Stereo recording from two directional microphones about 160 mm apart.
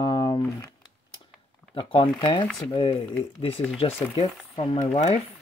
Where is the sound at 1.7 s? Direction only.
30° left (ahead or behind).